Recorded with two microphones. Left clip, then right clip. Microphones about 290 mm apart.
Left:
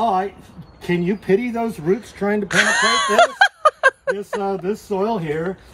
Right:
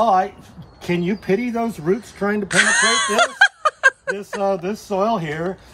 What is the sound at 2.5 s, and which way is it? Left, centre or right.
Speech, centre.